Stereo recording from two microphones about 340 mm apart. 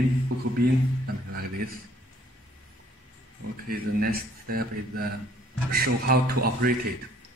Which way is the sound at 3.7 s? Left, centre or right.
Right.